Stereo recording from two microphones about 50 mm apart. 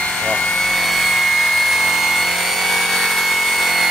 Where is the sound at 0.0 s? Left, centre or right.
Centre.